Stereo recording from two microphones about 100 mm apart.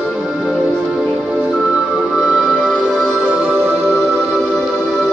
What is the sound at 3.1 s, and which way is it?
Music, 15° right (ahead or behind).